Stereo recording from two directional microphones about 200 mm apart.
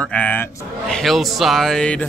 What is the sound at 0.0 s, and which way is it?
Speech, 5° left (ahead or behind).